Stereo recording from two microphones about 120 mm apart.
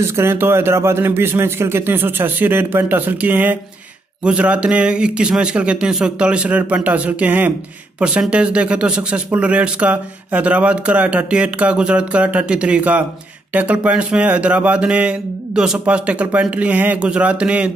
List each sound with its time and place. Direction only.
0.0 s speech: 20° right (ahead or behind)